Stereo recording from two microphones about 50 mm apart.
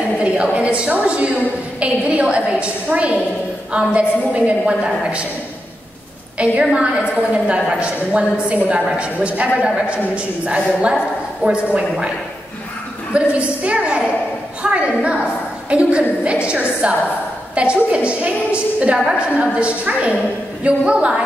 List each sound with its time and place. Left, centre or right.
0.2 s a woman's voice: right
6.3 s a woman's voice: right
13.1 s a woman's voice: right